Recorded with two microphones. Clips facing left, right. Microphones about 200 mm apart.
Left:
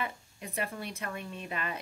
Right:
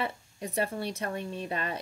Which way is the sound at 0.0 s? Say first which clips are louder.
Right 4 dB; 30° right (ahead or behind).